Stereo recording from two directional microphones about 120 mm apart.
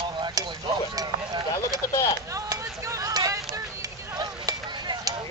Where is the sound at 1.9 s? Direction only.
25° left (ahead or behind).